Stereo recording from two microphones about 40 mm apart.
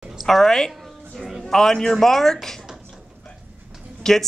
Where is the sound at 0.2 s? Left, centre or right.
Centre.